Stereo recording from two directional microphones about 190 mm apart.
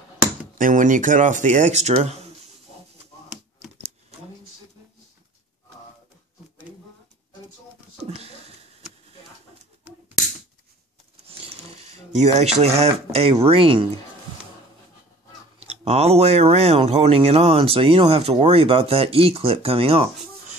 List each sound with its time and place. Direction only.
0.6 s speech: 45° right (ahead or behind)
8.0 s a sound: 35° right (ahead or behind)
12.1 s speech: 35° right (ahead or behind)
15.6 s speech: 35° right (ahead or behind)